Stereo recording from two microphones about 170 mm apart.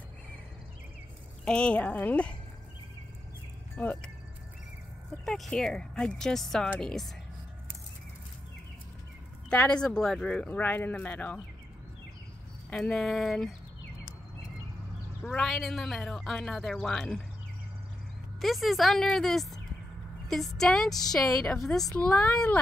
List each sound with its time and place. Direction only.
1.4 s speech: 5° left (ahead or behind)
3.7 s speech: 10° left (ahead or behind)
5.2 s speech: centre (ahead or behind)
9.5 s speech: 5° left (ahead or behind)
12.6 s speech: 5° left (ahead or behind)
15.2 s speech: 5° left (ahead or behind)
18.4 s speech: centre (ahead or behind)